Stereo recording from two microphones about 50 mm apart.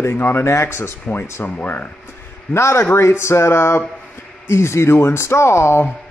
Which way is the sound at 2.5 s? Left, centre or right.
Left.